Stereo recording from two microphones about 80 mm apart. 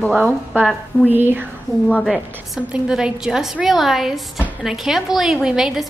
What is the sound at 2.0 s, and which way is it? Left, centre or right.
A woman's voice, centre.